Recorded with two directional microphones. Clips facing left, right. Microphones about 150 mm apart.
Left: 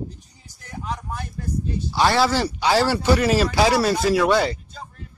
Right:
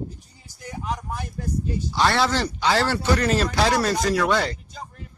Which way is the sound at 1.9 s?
5° left (ahead or behind).